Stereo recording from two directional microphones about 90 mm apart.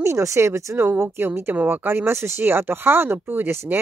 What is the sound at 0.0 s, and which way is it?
Speech, 30° right (ahead or behind).